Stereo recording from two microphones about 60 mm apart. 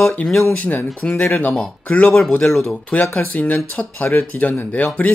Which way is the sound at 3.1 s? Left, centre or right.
Left.